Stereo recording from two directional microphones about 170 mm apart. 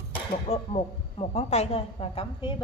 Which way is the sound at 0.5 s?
40° left (ahead or behind).